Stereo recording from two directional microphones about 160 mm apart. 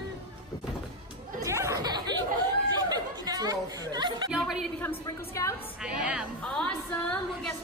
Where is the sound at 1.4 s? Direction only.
20° right (ahead or behind).